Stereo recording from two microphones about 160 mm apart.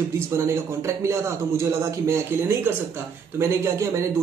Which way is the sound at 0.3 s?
20° right (ahead or behind).